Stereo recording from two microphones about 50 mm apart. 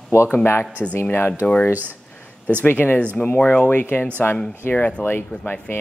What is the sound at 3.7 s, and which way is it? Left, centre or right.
Speech, left.